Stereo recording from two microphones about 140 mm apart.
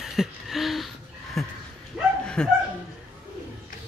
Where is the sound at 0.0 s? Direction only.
Centre (ahead or behind).